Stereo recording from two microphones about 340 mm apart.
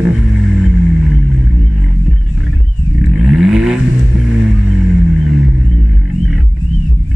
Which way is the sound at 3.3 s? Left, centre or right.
Centre.